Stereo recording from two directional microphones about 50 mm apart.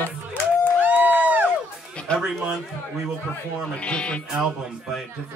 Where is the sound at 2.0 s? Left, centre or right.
Left.